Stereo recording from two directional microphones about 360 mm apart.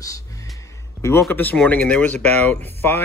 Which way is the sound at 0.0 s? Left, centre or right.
Centre.